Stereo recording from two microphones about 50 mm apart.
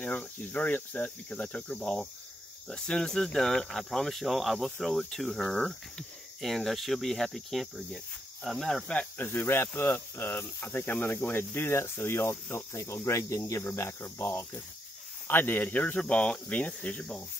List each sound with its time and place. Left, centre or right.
0.0 s cricket: left
3.1 s speech: centre
8.9 s speech: left
12.9 s cricket: left
13.5 s speech: left
14.2 s speech: left
15.2 s cricket: left
15.7 s cricket: left